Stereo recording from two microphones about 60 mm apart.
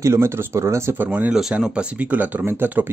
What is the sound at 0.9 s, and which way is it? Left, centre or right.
Speech, right.